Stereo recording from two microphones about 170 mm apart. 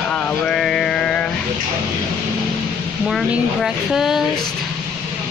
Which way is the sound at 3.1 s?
Centre (ahead or behind).